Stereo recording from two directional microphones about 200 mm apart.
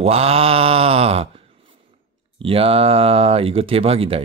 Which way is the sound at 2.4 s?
25° right (ahead or behind).